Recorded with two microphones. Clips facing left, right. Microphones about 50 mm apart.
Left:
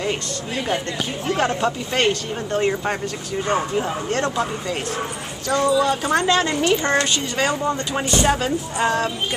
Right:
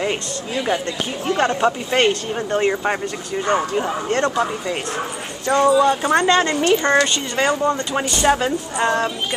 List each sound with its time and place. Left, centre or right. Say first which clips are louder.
1.3 s speech: right 2 dB; centre
1.6 s speech: right 3 dB; centre
5.5 s speech: right 4 dB; right
6.0 s speech: right 3 dB; centre